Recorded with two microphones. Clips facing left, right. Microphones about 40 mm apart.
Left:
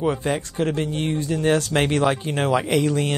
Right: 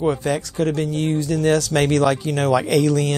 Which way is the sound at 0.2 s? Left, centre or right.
Left.